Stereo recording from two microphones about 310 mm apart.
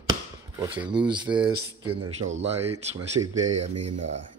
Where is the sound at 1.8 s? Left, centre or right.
Right.